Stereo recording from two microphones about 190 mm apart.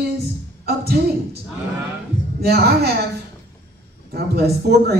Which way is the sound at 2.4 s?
55° right (ahead or behind).